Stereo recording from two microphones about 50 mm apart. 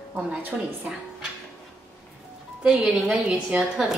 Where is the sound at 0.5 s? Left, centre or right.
Centre.